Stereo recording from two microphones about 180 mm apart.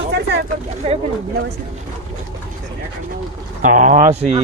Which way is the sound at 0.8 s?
35° right (ahead or behind).